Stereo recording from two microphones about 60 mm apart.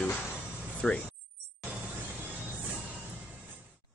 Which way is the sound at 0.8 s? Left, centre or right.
Centre.